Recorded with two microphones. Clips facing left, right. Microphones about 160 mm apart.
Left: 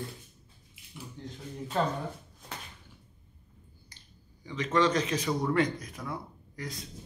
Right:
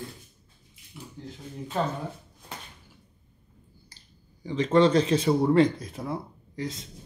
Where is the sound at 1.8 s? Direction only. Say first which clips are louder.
Right 1 dB; 5° right (ahead or behind).